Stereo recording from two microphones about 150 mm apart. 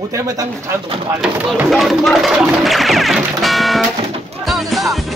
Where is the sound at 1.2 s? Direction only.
5° right (ahead or behind).